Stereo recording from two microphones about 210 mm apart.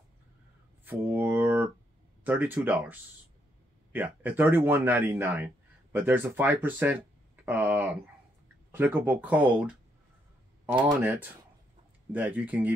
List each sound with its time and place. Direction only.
0.8 s a sound: 10° right (ahead or behind)
2.2 s speech: 10° right (ahead or behind)
10.8 s speech: 20° right (ahead or behind)
11.1 s speech: 10° right (ahead or behind)